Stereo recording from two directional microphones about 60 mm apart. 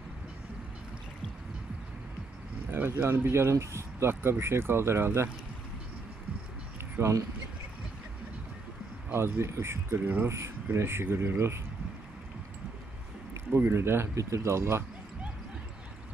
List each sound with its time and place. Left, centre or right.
2.9 s speech: right
7.0 s speech: right
9.1 s speech: right
13.5 s speech: right
14.1 s speech: right